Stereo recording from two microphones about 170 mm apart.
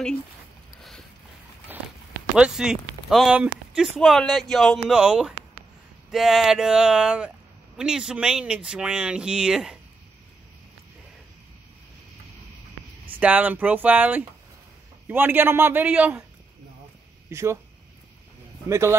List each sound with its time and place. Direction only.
1.7 s walk: 10° right (ahead or behind)
2.3 s speech: 5° right (ahead or behind)
13.1 s a man's voice: 10° right (ahead or behind)
17.3 s speech: 15° right (ahead or behind)
18.7 s a man's voice: 15° right (ahead or behind)